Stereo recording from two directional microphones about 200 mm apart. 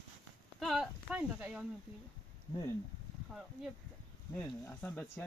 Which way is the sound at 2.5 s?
20° left (ahead or behind).